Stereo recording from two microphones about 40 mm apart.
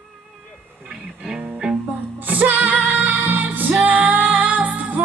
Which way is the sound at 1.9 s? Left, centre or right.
Right.